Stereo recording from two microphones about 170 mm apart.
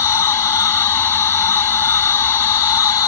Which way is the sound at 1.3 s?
15° left (ahead or behind).